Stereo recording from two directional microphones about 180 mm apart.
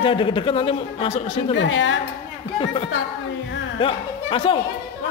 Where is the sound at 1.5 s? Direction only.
90° left.